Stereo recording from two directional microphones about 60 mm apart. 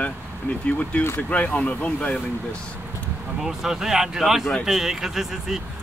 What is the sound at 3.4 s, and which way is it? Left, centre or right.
Speech, centre.